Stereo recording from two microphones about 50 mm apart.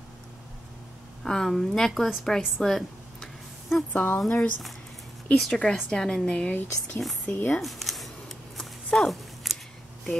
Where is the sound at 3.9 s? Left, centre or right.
Left.